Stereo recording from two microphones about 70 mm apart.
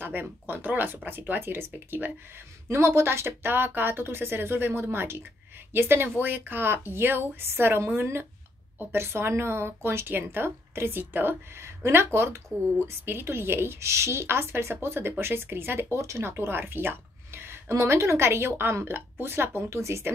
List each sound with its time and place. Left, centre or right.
0.0 s a woman's voice: right